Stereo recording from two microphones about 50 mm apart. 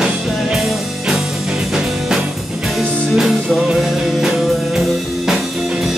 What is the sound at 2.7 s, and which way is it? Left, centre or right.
Music, centre.